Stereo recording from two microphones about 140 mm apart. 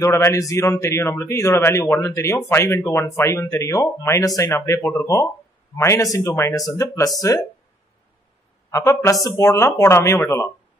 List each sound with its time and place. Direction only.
0.0 s speech: 20° left (ahead or behind)
8.6 s speech: 20° left (ahead or behind)